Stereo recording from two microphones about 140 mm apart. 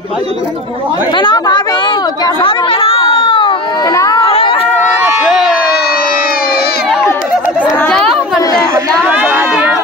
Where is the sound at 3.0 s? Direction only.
40° left (ahead or behind).